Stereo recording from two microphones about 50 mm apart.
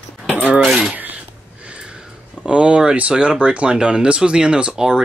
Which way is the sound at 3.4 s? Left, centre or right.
Right.